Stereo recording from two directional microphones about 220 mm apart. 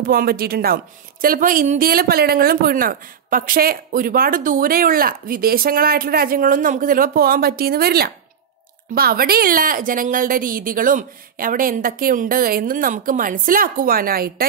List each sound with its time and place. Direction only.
0.0 s a woman's voice: 40° right (ahead or behind)